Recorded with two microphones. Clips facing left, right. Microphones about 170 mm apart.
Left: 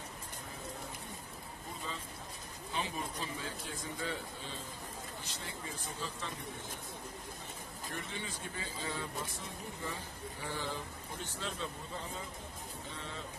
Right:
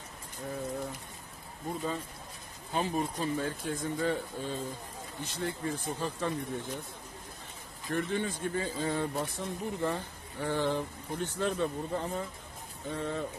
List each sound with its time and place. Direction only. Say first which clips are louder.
2.7 s speech: right 8 dB; 45° right (ahead or behind)
7.9 s speech: right 13 dB; 50° right (ahead or behind)